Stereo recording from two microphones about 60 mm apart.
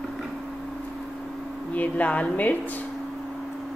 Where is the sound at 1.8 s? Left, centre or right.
Left.